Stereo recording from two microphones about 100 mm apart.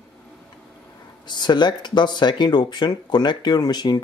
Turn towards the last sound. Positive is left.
turn(degrees=45)  # may be behind; listen again after turning